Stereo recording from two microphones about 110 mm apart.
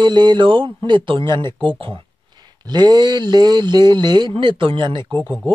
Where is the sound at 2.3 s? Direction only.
40° right (ahead or behind).